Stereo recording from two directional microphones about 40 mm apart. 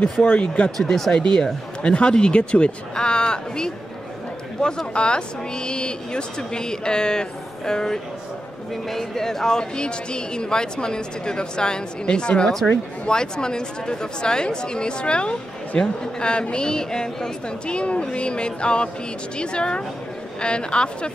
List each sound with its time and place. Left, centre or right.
0.2 s speech: left
0.7 s speech: centre
1.1 s speech: left
17.7 s speech: left